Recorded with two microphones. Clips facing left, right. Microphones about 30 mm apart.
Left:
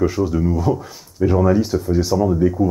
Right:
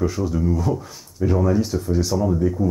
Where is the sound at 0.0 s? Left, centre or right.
Centre.